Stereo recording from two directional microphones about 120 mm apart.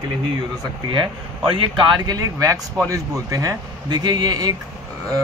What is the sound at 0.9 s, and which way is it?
A man's voice, 45° right (ahead or behind).